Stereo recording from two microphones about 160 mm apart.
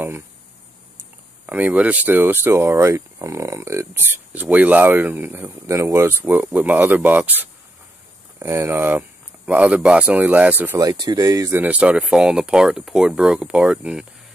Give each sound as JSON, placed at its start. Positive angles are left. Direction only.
{"t": 1.4, "sound": "speech", "side_deg": -10}
{"t": 10.8, "sound": "speech", "side_deg": -25}